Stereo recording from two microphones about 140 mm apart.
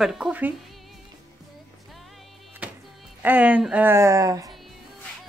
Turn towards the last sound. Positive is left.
turn(degrees=-25)  # may be behind; listen again after turning